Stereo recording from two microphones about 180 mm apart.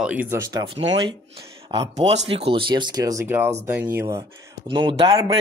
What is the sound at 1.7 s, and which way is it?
A woman's voice, 35° right (ahead or behind).